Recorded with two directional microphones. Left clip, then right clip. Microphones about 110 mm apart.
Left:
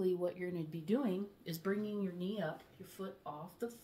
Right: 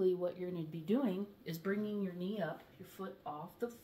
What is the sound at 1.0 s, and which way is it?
Speech, 35° left (ahead or behind).